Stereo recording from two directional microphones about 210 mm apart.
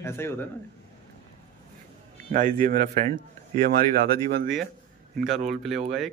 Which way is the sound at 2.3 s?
40° right (ahead or behind).